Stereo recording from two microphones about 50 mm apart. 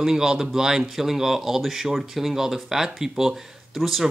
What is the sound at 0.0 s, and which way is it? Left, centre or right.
Speech, centre.